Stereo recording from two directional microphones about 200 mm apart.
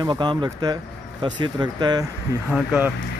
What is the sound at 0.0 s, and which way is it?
Speech, 20° right (ahead or behind).